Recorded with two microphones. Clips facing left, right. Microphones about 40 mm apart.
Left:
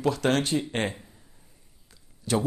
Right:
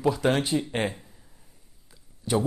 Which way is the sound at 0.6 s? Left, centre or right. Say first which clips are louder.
Right 1 dB; centre.